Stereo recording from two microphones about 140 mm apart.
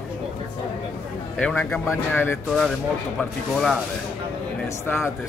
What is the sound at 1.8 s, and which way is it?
Speech, 15° left (ahead or behind).